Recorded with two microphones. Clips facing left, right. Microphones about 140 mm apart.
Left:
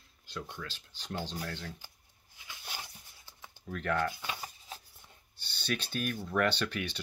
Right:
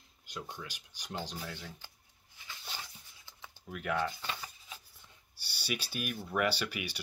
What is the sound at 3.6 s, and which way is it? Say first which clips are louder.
Speech: left 2 dB; 10° right (ahead or behind).